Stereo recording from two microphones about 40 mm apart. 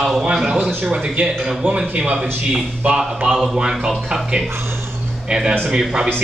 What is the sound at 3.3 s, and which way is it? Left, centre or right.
Speech, centre.